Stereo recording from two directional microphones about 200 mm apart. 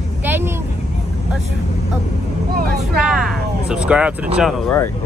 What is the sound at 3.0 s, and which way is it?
Speech, 5° right (ahead or behind).